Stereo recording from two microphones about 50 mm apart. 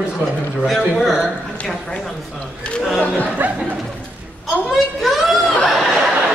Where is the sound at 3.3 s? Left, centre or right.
Right.